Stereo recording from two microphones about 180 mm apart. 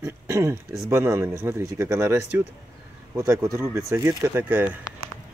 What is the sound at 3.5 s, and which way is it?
Speech, 15° right (ahead or behind).